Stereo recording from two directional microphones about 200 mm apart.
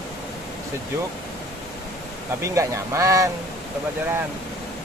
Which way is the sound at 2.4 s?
15° right (ahead or behind).